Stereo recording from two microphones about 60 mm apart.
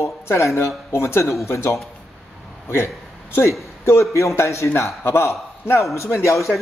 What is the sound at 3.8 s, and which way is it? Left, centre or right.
A man's voice, left.